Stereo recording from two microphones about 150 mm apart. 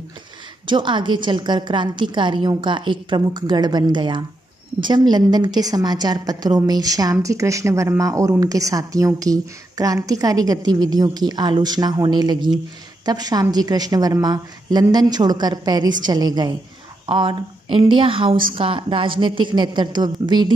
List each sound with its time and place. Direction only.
0.7 s a woman's voice: 30° right (ahead or behind)